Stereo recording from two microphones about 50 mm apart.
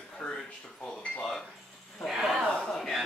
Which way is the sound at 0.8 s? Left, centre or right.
Centre.